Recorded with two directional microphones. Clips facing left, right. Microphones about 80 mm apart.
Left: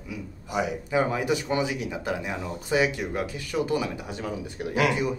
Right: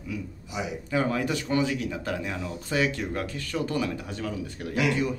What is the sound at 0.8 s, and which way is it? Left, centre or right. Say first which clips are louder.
Speech: even; centre.